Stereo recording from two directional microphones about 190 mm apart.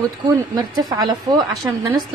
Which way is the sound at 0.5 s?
20° right (ahead or behind).